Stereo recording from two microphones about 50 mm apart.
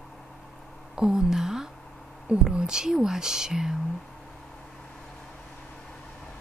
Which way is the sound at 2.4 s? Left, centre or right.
Centre.